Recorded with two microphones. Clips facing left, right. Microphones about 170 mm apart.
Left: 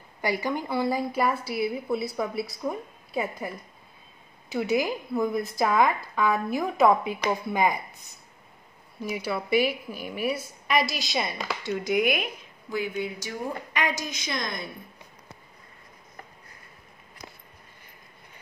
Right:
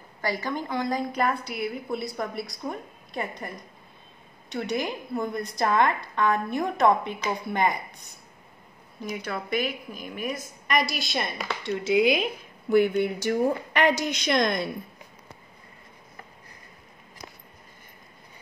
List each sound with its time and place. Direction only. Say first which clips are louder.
0.2 s a woman's voice: left 2 dB; 10° left (ahead or behind)
4.5 s a woman's voice: left 3 dB; 5° left (ahead or behind)
9.0 s a woman's voice: left 2 dB; 5° left (ahead or behind)
11.6 s speech: right 3 dB; 75° right (ahead or behind)
12.6 s speech: right 9 dB; 65° right (ahead or behind)